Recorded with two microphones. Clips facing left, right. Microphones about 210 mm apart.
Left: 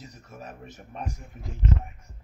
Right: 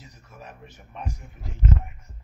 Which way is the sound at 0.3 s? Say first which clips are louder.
Left 2 dB; 40° left (ahead or behind).